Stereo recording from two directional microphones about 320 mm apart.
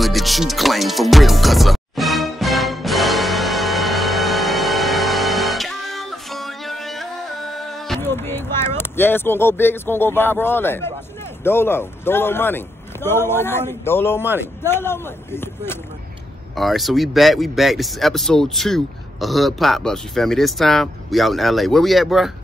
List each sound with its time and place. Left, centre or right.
0.0 s music: centre
11.4 s a man's voice: centre